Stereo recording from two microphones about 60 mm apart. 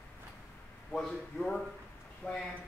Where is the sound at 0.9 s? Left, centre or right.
Centre.